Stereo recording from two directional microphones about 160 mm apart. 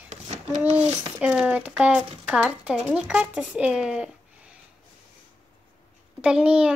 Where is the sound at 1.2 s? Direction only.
5° right (ahead or behind).